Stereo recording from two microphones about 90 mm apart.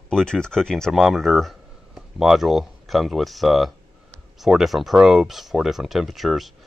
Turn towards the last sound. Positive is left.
turn(degrees=0)  # may be behind; listen again after turning